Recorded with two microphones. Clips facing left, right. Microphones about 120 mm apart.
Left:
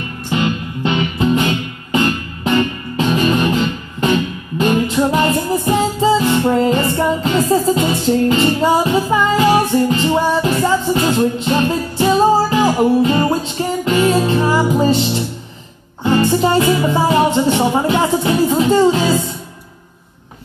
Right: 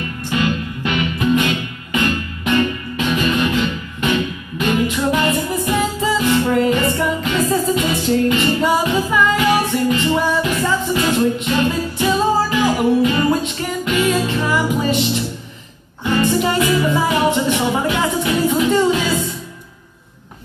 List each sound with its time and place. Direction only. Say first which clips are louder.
0.3 s music: left 2 dB; 25° left (ahead or behind)